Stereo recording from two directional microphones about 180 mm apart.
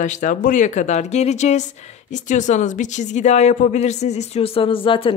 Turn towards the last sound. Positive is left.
turn(degrees=30)  # may be behind; listen again after turning